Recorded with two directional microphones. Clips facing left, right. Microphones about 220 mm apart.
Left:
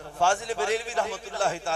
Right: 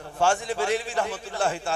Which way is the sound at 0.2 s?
10° right (ahead or behind).